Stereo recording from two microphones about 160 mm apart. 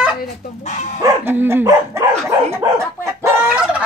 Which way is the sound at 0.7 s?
45° left (ahead or behind).